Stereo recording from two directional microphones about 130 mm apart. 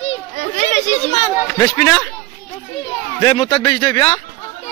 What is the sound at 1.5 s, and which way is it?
Speech, 25° left (ahead or behind).